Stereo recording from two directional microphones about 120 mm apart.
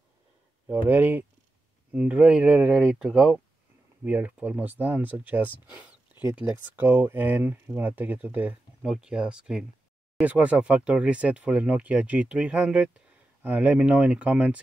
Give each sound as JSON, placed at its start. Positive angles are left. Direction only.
{"t": 0.7, "sound": "speech", "side_deg": -15}
{"t": 6.1, "sound": "speech", "side_deg": 40}
{"t": 6.4, "sound": "speech", "side_deg": -15}